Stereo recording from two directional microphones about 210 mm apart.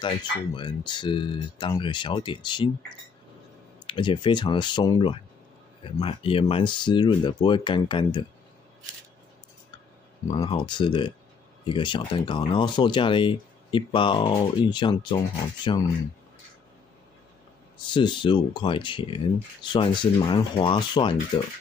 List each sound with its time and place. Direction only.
0.0 s speech: 20° left (ahead or behind)
3.8 s speech: 25° left (ahead or behind)
10.3 s speech: 20° left (ahead or behind)
17.8 s speech: 20° left (ahead or behind)